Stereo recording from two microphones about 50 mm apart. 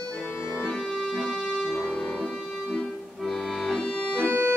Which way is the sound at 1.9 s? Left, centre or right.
Left.